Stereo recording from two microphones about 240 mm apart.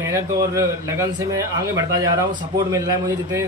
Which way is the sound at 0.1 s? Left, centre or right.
Centre.